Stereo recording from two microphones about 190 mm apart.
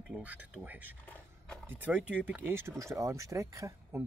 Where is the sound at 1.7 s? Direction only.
10° right (ahead or behind).